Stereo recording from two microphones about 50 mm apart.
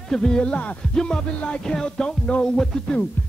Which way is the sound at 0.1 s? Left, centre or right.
Centre.